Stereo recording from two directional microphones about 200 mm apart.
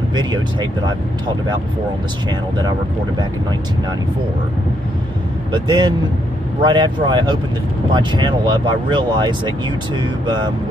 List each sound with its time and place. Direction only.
0.1 s speech: 20° right (ahead or behind)
5.5 s speech: 20° right (ahead or behind)